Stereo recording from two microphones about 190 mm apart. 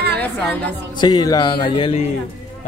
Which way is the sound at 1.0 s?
20° left (ahead or behind).